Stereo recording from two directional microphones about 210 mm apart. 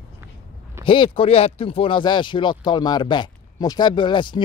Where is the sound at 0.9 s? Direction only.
25° left (ahead or behind).